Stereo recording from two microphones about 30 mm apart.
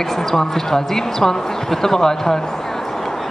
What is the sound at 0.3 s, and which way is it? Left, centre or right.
Speech, centre.